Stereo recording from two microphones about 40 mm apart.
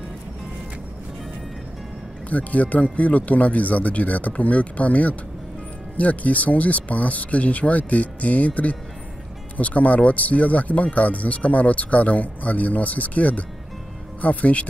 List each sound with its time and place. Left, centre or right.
2.2 s speech: left